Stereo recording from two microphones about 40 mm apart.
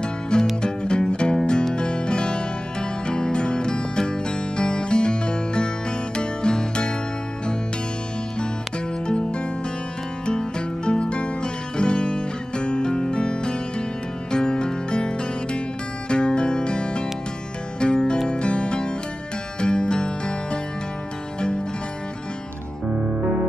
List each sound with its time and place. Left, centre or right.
0.0 s music: left
9.0 s music: left
10.9 s guitar: left
14.3 s music: left
22.8 s music: centre